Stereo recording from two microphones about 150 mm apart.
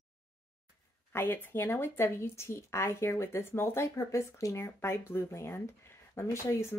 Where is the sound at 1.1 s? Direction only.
15° left (ahead or behind).